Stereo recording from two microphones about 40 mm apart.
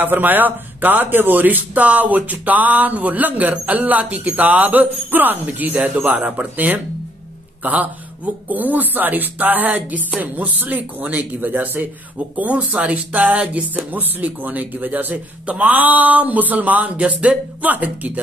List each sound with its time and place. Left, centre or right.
0.0 s speech: right
6.1 s speech: right
8.5 s speech: right
12.4 s speech: right